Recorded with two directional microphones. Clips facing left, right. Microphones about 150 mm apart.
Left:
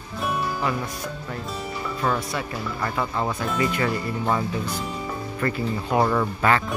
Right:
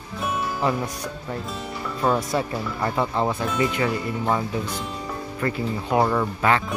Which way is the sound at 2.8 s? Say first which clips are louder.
Right 3 dB; 25° right (ahead or behind).